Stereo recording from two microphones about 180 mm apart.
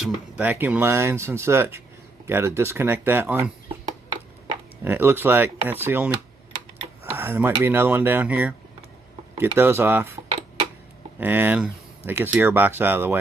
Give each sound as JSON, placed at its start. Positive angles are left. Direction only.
{"t": 0.0, "sound": "speech", "side_deg": -10}
{"t": 4.8, "sound": "speech", "side_deg": -10}
{"t": 7.2, "sound": "speech", "side_deg": -15}
{"t": 10.2, "sound": "a sound", "side_deg": -35}
{"t": 11.1, "sound": "speech", "side_deg": -10}